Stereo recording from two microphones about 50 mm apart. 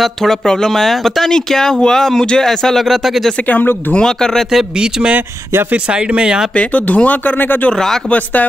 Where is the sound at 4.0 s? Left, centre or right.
Centre.